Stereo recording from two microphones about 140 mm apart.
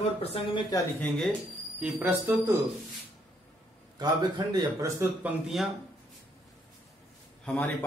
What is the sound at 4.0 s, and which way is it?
Speech, 30° right (ahead or behind).